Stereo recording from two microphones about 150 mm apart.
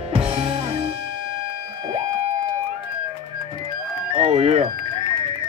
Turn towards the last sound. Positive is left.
turn(degrees=-40)  # may be behind; listen again after turning